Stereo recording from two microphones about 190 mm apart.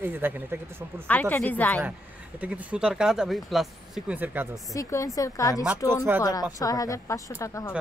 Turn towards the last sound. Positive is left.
turn(degrees=15)  # may be behind; listen again after turning